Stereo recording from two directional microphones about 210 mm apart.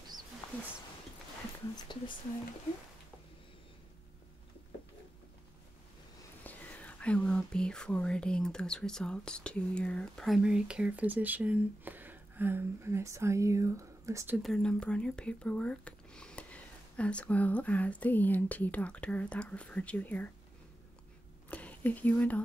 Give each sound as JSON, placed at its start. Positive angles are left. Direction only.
{"t": 1.9, "sound": "speech", "side_deg": 20}
{"t": 6.4, "sound": "speech", "side_deg": 5}
{"t": 14.5, "sound": "speech", "side_deg": 5}
{"t": 21.5, "sound": "speech", "side_deg": 5}